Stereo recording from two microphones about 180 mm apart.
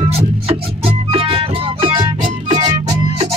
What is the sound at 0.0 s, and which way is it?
Music, 35° right (ahead or behind).